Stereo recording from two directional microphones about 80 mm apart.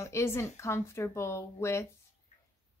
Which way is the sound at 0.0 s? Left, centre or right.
Left.